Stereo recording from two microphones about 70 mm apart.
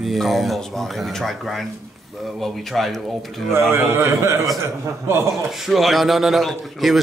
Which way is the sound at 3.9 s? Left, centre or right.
Right.